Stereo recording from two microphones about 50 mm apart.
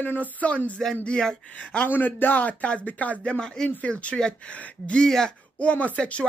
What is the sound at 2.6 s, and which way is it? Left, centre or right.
Speech, left.